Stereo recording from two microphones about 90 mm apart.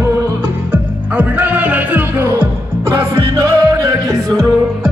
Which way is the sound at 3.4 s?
35° right (ahead or behind).